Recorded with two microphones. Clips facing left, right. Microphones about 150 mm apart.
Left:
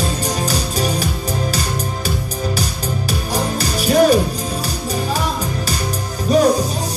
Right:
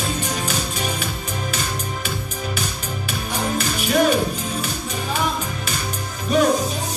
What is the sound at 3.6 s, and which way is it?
Music, 35° left (ahead or behind).